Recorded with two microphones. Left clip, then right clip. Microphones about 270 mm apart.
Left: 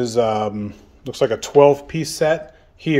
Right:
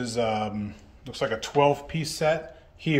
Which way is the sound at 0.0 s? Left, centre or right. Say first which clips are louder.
Left 8 dB; left.